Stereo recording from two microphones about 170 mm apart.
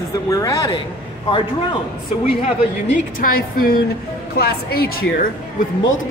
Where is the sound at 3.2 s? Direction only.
60° left (ahead or behind).